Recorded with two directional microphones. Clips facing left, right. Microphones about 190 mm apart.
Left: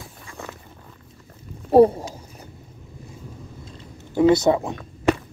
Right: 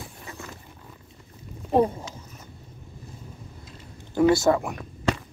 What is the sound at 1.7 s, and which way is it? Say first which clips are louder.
Speech: left 8 dB; 35° left (ahead or behind).